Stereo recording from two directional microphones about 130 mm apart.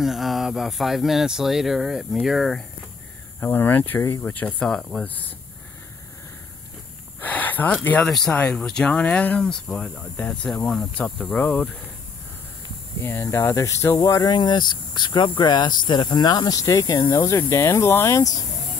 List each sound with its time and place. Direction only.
0.0 s speech: centre (ahead or behind)
3.3 s speech: 15° left (ahead or behind)
7.2 s a sound: 10° left (ahead or behind)
8.1 s speech: 5° left (ahead or behind)
13.0 s speech: 20° left (ahead or behind)